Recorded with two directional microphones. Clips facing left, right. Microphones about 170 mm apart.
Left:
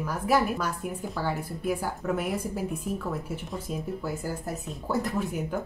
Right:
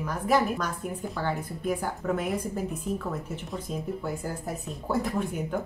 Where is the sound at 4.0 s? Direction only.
Centre (ahead or behind).